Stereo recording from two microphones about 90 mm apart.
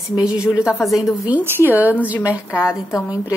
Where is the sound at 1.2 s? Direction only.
20° right (ahead or behind).